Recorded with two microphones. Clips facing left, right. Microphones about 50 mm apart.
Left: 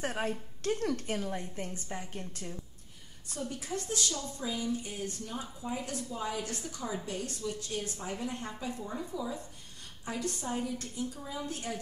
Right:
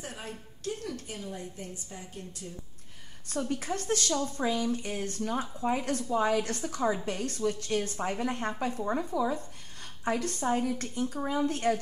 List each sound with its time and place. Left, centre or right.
0.0 s a woman's voice: left
3.3 s a woman's voice: right
4.4 s a woman's voice: right